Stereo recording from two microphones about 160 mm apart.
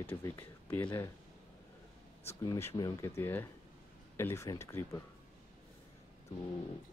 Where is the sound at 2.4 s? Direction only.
15° left (ahead or behind).